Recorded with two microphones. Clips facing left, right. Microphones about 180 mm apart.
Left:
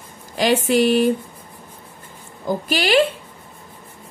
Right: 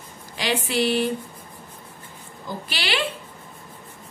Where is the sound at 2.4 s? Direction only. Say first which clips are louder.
Left 10 dB; 45° left (ahead or behind).